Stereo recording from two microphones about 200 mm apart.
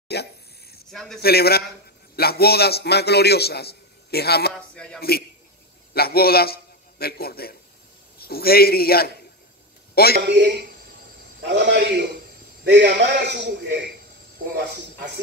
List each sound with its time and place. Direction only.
0.1 s a sound: 55° left (ahead or behind)
0.9 s speech: centre (ahead or behind)
1.2 s a man's voice: 50° left (ahead or behind)
4.7 s speech: 5° left (ahead or behind)
5.9 s a man's voice: 50° left (ahead or behind)
10.2 s a man's voice: 60° right (ahead or behind)